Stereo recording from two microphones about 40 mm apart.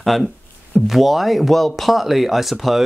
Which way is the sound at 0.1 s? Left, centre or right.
Centre.